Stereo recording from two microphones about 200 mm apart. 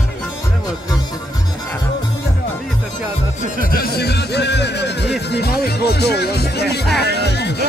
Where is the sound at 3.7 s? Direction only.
50° left (ahead or behind).